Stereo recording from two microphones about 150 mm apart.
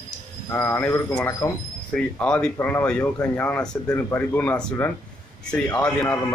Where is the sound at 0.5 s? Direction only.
15° left (ahead or behind).